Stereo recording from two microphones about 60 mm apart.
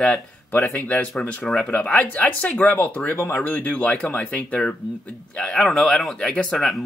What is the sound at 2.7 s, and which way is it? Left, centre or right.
Speech, left.